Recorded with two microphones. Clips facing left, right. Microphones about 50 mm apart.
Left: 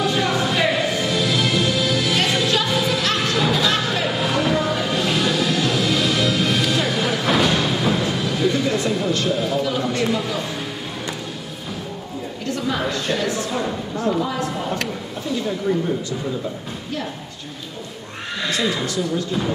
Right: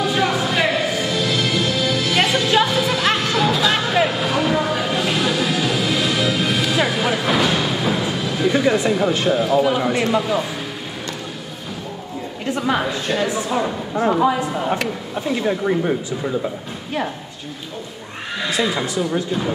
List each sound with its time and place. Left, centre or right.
0.0 s music: centre
8.5 s a sound: centre
9.3 s a woman's voice: centre
9.6 s speech: right
12.8 s a woman's voice: centre
13.9 s speech: right
14.4 s speech: centre
15.2 s speech: right
18.4 s speech: centre